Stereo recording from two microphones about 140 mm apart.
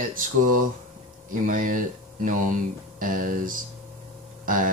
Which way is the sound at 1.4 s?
75° right (ahead or behind).